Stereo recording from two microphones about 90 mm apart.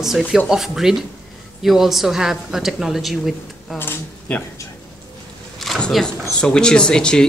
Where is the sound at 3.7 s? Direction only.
25° left (ahead or behind).